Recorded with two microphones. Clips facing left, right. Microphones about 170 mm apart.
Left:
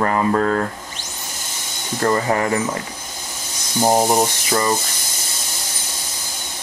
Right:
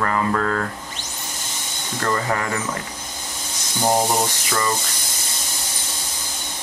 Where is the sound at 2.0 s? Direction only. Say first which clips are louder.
Left 5 dB; 25° left (ahead or behind).